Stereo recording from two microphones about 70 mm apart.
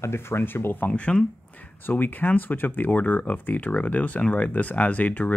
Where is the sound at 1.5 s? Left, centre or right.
Left.